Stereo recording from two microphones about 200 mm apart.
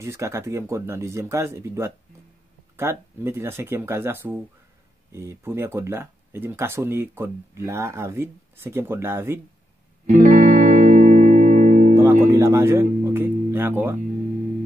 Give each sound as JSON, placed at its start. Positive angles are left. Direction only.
{"t": 0.0, "sound": "speech", "side_deg": -15}
{"t": 10.0, "sound": "music", "side_deg": -40}
{"t": 12.3, "sound": "music", "side_deg": -15}